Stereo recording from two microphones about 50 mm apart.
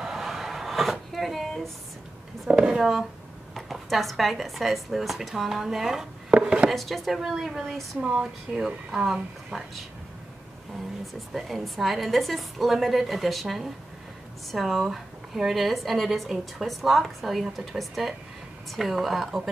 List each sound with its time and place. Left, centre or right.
0.0 s a sound: centre
2.5 s a woman's voice: centre
6.3 s chopping: centre
6.7 s a woman's voice: centre
11.1 s a woman's voice: centre